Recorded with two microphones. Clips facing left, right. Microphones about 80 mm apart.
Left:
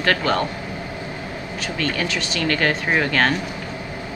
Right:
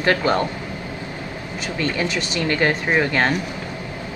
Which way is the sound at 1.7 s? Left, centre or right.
Right.